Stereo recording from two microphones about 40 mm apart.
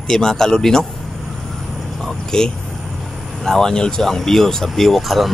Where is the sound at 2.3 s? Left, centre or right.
Centre.